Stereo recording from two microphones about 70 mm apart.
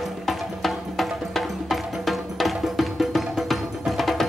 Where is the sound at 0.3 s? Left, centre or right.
Centre.